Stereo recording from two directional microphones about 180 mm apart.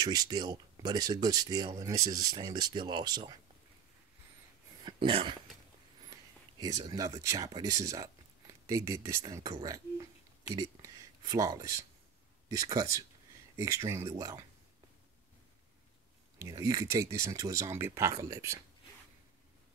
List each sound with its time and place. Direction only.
0.0 s speech: 20° right (ahead or behind)
4.8 s speech: 30° right (ahead or behind)
6.6 s speech: 20° right (ahead or behind)
16.3 s speech: 15° right (ahead or behind)